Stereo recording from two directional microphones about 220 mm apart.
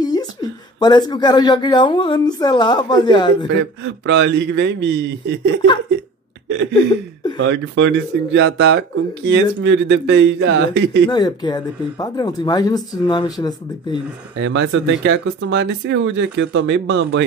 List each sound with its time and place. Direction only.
0.0 s speech: 20° left (ahead or behind)
3.8 s a man's voice: 55° right (ahead or behind)
7.3 s speech: 55° right (ahead or behind)
11.1 s speech: 20° left (ahead or behind)
14.4 s speech: 55° right (ahead or behind)